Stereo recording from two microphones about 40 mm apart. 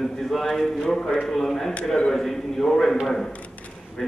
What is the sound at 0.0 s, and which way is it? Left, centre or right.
A man's voice, centre.